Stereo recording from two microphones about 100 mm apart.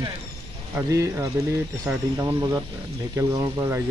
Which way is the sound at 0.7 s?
30° right (ahead or behind).